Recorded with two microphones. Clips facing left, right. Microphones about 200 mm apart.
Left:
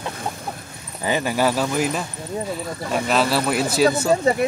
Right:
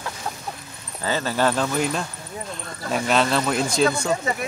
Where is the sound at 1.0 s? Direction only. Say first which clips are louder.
Left 2 dB; 15° left (ahead or behind).